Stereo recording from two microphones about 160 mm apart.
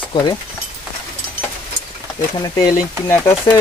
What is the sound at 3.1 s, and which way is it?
Speech, 15° left (ahead or behind).